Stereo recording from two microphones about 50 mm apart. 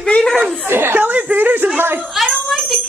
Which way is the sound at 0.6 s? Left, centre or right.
Right.